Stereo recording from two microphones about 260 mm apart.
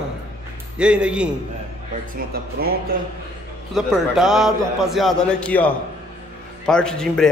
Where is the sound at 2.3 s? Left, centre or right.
Right.